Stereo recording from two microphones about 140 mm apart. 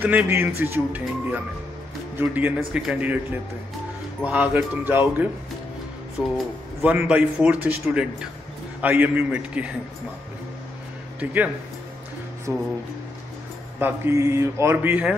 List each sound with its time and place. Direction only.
0.0 s a man's voice: 15° right (ahead or behind)
6.3 s a man's voice: 10° right (ahead or behind)
11.1 s a man's voice: 10° right (ahead or behind)
13.7 s a man's voice: 15° right (ahead or behind)